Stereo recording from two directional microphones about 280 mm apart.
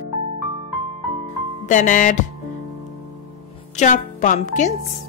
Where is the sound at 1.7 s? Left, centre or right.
Left.